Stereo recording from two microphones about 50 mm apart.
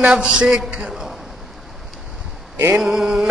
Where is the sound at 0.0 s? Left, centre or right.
Right.